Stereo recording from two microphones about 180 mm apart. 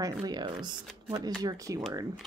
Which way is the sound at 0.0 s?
20° right (ahead or behind).